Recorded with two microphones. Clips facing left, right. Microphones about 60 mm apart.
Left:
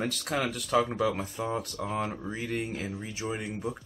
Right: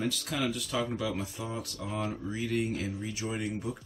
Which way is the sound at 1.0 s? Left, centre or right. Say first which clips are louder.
Left 5 dB; left.